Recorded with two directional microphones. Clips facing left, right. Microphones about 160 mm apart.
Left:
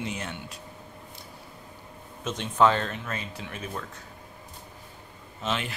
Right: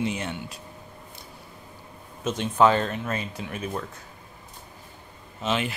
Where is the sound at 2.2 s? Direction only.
5° right (ahead or behind).